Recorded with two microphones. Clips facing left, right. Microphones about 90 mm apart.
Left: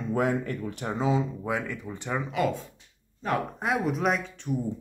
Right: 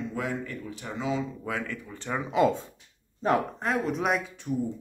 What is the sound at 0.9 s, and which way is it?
Speech, 30° left (ahead or behind).